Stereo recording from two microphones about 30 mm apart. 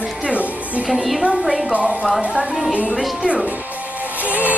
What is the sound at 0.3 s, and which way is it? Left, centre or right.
Music, right.